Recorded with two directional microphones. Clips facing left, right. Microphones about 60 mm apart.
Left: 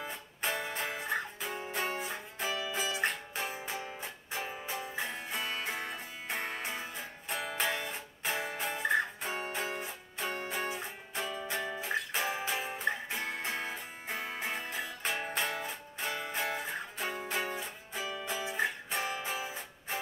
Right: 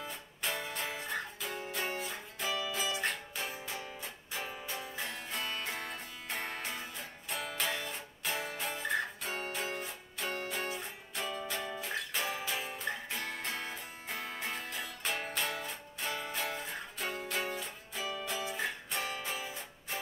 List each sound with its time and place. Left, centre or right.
0.4 s music: left